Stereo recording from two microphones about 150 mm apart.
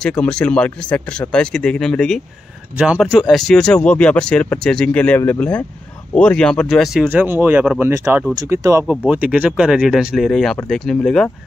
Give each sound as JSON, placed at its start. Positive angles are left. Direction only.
{"t": 0.0, "sound": "speech", "side_deg": 5}
{"t": 9.0, "sound": "speech", "side_deg": -10}